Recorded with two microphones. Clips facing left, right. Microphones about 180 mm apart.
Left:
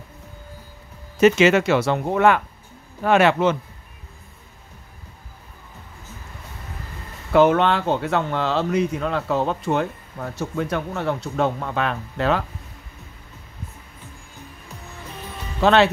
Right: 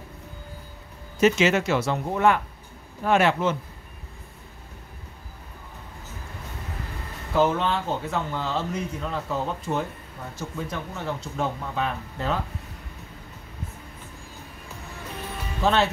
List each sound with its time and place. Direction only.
1.2 s speech: 70° left (ahead or behind)
7.3 s speech: 70° left (ahead or behind)
15.6 s speech: 75° left (ahead or behind)